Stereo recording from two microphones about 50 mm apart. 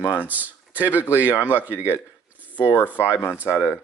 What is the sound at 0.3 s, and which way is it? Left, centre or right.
Speech, right.